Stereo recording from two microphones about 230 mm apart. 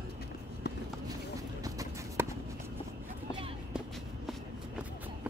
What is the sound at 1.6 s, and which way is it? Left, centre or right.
Run, centre.